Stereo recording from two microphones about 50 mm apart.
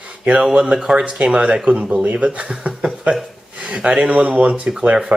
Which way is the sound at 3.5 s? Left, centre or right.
Right.